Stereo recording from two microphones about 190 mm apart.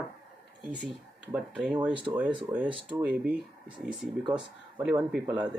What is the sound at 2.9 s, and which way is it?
Speech, 10° right (ahead or behind).